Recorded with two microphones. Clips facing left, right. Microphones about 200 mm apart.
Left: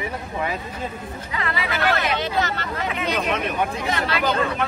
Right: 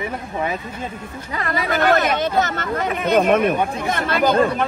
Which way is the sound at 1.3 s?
45° right (ahead or behind).